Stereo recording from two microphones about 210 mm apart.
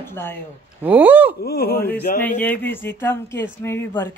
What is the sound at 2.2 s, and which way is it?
Speech, 10° left (ahead or behind).